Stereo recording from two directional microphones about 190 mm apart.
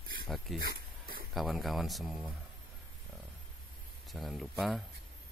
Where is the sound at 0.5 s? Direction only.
50° right (ahead or behind).